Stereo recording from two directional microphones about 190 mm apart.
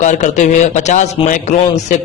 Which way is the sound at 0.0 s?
40° left (ahead or behind).